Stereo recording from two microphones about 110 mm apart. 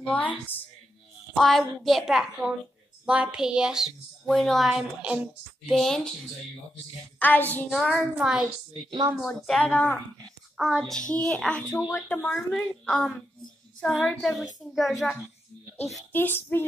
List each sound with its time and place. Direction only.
0.0 s speech: 15° left (ahead or behind)
1.3 s speech: centre (ahead or behind)
5.7 s speech: centre (ahead or behind)
7.2 s speech: 15° left (ahead or behind)
7.7 s speech: centre (ahead or behind)
9.5 s speech: 10° left (ahead or behind)
16.1 s child singing: 20° left (ahead or behind)